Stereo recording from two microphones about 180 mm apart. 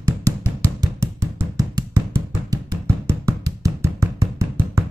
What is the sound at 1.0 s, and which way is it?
Music, 15° right (ahead or behind).